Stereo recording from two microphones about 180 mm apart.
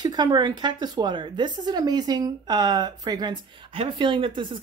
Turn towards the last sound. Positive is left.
turn(degrees=-25)  # may be behind; listen again after turning